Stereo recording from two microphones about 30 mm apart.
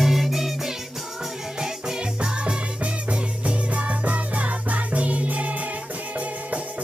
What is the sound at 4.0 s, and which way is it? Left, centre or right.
Music, right.